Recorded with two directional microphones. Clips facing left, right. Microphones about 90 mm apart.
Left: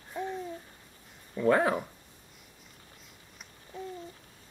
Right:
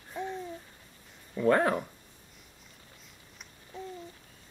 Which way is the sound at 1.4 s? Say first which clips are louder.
Even; 5° left (ahead or behind).